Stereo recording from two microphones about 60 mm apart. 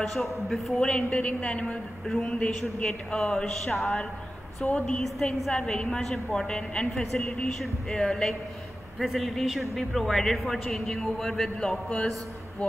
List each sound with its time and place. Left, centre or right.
0.0 s speech: centre
0.7 s a woman's voice: centre
1.7 s a man's voice: centre
5.0 s a man's voice: centre
6.9 s speech: centre
7.2 s a man's voice: centre